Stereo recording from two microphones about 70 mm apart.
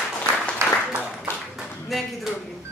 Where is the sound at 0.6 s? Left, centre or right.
Right.